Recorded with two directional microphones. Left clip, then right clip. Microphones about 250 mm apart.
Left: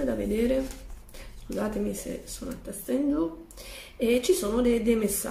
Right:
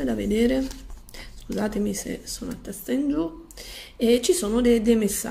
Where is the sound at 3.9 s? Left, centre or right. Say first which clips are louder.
Right 3 dB; right.